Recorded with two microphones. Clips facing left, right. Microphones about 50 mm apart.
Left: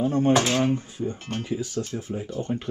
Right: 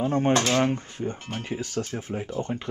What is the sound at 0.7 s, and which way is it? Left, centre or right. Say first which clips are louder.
Speech: left 2 dB; right.